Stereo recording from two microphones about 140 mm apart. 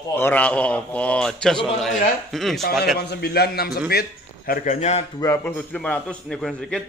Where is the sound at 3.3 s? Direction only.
90° left.